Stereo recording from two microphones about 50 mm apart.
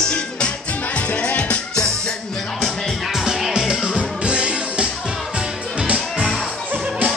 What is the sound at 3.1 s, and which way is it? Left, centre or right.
Music, centre.